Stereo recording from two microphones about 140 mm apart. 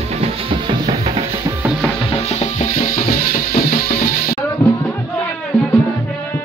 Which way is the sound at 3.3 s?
80° left.